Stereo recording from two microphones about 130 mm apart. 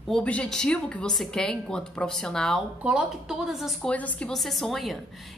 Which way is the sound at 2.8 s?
5° right (ahead or behind).